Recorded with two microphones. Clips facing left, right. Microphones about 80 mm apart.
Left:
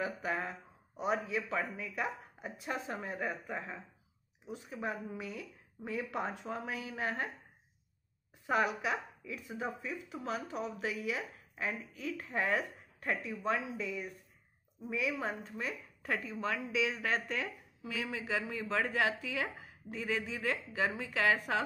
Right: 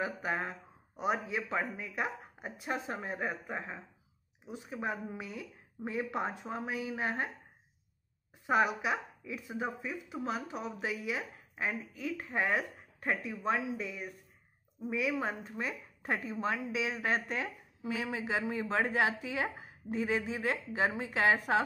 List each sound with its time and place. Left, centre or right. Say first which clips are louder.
0.0 s a woman's voice: right 1 dB; right
8.5 s a woman's voice: right 3 dB; centre